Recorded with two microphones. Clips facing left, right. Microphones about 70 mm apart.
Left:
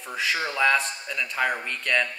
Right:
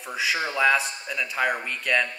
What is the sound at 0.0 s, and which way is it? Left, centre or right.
Speech, centre.